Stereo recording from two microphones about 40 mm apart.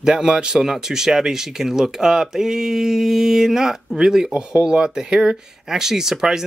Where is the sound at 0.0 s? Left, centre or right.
Centre.